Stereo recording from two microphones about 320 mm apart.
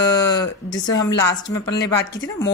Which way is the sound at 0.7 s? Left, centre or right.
Left.